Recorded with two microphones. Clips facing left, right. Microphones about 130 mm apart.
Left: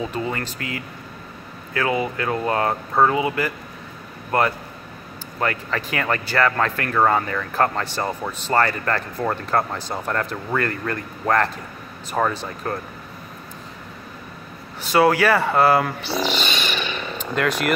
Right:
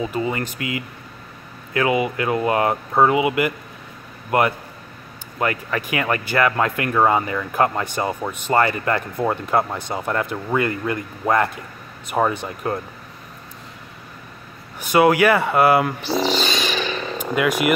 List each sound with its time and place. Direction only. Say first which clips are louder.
0.0 s speech: right 3 dB; 10° right (ahead or behind)
0.6 s speech: right 3 dB; 45° left (ahead or behind)
1.7 s speech: right 3 dB; 15° right (ahead or behind)
14.8 s speech: right 2 dB; 15° right (ahead or behind)
16.3 s a sound: right 3 dB; 40° right (ahead or behind)
17.2 s speech: right 3 dB; 10° right (ahead or behind)